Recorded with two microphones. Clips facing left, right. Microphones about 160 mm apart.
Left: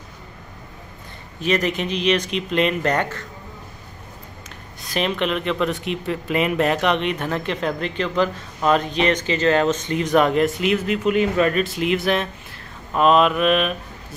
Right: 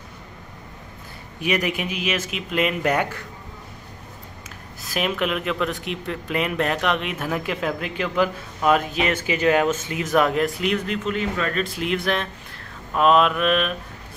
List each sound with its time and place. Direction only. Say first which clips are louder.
1.4 s speech: left 3 dB; 10° right (ahead or behind)
4.8 s speech: left 2 dB; 5° right (ahead or behind)
11.1 s speech: left 9 dB; 15° left (ahead or behind)
11.6 s speech: left 3 dB; centre (ahead or behind)